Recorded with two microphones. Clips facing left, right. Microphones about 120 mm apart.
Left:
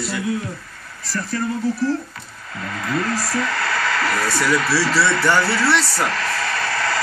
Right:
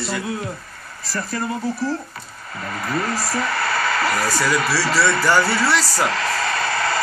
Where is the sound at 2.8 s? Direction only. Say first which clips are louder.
Left 1 dB; 10° right (ahead or behind).